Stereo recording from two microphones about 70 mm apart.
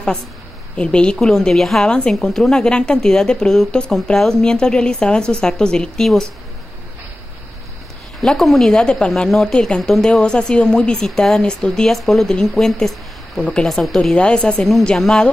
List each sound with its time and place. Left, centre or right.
0.7 s a woman's voice: centre
8.2 s a woman's voice: centre
10.2 s a woman's voice: centre
14.1 s a woman's voice: centre
14.6 s speech: centre